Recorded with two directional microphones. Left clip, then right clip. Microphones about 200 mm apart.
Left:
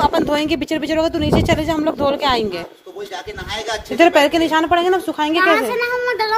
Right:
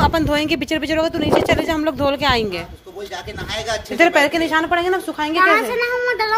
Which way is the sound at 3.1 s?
50° right (ahead or behind).